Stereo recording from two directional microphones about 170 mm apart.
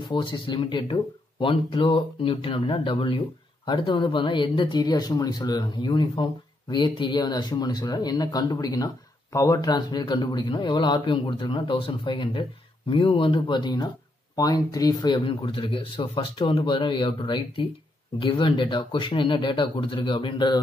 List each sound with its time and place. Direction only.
0.1 s speech: 25° left (ahead or behind)